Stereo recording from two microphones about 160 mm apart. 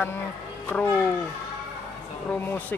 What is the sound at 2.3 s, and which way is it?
Speech, 10° left (ahead or behind).